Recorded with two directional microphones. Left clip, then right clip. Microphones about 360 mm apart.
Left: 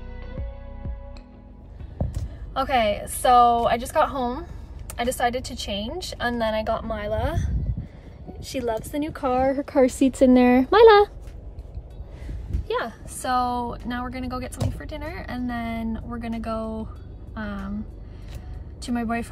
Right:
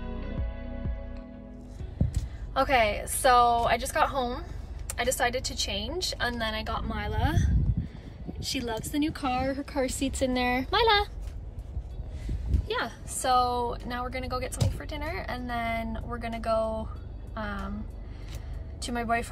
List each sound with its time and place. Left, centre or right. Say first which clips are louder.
2.5 s a woman's voice: left 2 dB; centre; by 11.1 s left
12.6 s a woman's voice: left 4 dB; centre
18.8 s a woman's voice: left 1 dB; centre